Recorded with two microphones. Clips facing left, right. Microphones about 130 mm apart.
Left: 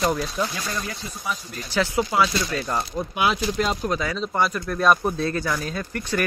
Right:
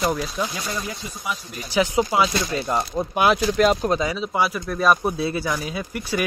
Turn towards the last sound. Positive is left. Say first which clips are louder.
# even
turn(degrees=-10)  # may be behind; listen again after turning